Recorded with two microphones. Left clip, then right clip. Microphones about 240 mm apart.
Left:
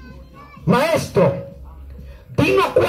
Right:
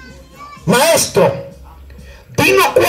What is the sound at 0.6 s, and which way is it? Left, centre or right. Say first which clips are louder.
Speech: right 6 dB; right.